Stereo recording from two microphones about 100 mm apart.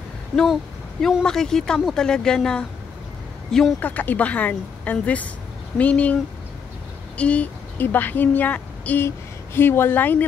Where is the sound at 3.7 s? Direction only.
15° left (ahead or behind).